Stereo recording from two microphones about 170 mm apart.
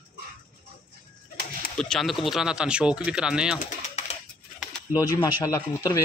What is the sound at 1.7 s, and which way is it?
Speech, 5° left (ahead or behind).